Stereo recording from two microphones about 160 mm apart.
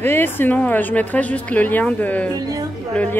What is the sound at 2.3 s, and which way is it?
Speech, 25° right (ahead or behind).